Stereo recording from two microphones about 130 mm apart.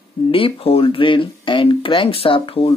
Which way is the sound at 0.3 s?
45° left (ahead or behind).